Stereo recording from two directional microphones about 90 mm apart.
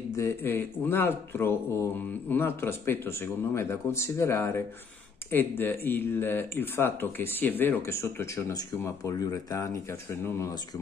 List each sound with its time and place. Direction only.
0.1 s speech: 30° left (ahead or behind)